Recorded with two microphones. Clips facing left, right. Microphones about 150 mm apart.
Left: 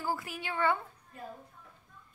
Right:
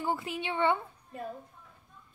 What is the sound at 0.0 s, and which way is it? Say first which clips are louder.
Speech: right 3 dB; 25° right (ahead or behind).